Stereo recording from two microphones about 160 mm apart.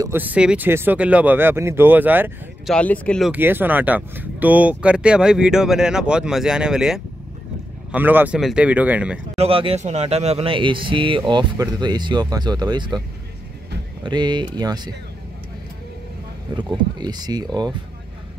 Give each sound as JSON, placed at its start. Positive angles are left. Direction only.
{"t": 0.0, "sound": "speech", "side_deg": -10}
{"t": 2.6, "sound": "speech", "side_deg": 5}
{"t": 3.3, "sound": "speech", "side_deg": -15}
{"t": 9.3, "sound": "speech", "side_deg": -35}
{"t": 14.0, "sound": "speech", "side_deg": -30}
{"t": 16.5, "sound": "speech", "side_deg": -25}